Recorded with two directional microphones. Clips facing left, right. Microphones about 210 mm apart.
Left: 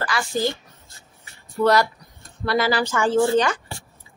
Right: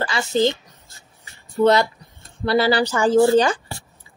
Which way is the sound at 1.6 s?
25° right (ahead or behind).